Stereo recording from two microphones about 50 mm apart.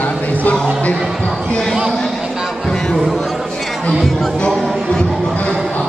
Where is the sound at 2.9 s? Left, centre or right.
Centre.